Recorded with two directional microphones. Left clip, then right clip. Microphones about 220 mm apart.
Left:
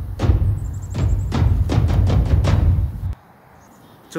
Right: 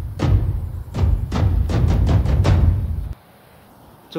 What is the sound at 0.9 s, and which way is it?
Music, centre (ahead or behind).